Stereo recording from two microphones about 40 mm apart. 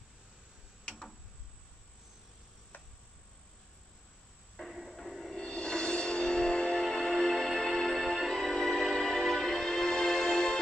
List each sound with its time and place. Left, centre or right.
4.6 s music: centre
5.4 s music: left